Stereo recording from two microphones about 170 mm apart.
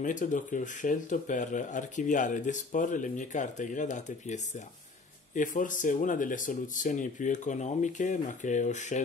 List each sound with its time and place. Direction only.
0.0 s speech: 50° left (ahead or behind)